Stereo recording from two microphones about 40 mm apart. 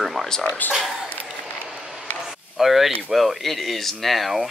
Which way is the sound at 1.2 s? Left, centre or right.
Centre.